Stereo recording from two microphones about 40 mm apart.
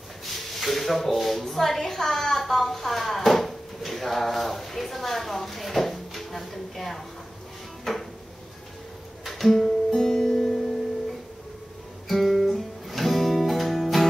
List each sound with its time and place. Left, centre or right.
0.2 s a sound: centre
1.4 s a woman's voice: centre
7.9 s drawer open or close: centre
9.2 s music: centre
12.1 s music: centre